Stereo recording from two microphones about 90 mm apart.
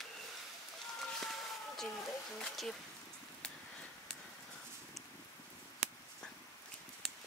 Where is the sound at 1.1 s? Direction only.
5° left (ahead or behind).